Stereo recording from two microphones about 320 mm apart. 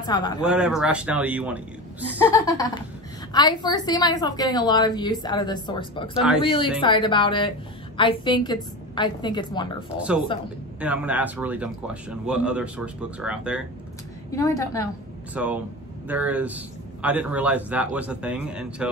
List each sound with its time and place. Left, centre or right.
0.0 s a woman's voice: centre
0.4 s speech: centre
2.1 s a woman's voice: centre
9.9 s speech: centre
14.3 s a woman's voice: centre
15.3 s speech: centre